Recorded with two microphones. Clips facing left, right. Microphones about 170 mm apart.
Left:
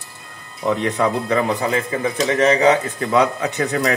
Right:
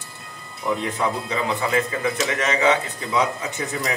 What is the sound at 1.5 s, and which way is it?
A man's voice, 35° left (ahead or behind).